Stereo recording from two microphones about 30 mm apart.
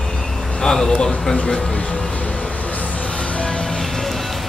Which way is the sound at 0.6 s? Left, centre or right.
Centre.